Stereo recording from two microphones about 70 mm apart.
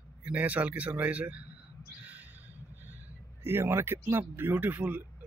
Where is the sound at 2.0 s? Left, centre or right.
Right.